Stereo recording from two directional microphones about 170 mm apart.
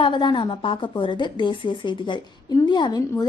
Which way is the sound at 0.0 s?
25° left (ahead or behind).